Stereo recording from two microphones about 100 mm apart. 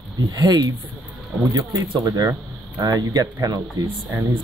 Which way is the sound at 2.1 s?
30° right (ahead or behind).